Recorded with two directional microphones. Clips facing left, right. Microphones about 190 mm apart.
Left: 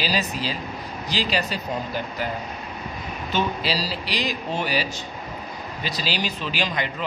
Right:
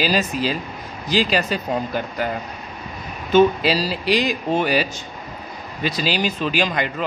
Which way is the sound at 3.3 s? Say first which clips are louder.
Right 10 dB; 50° right (ahead or behind).